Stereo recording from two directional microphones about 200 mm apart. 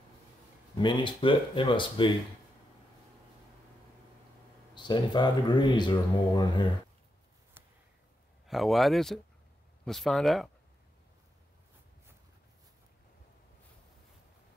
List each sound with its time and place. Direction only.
0.7 s speech: 25° left (ahead or behind)
4.7 s speech: 20° left (ahead or behind)
7.6 s a sound: 10° right (ahead or behind)
8.5 s speech: centre (ahead or behind)